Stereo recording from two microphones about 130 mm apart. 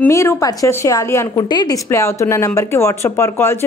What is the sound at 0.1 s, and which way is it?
Speech, 20° left (ahead or behind).